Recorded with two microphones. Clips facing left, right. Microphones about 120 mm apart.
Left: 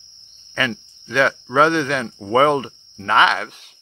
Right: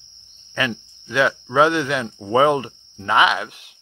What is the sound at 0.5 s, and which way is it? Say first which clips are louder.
Speech: even; 5° right (ahead or behind).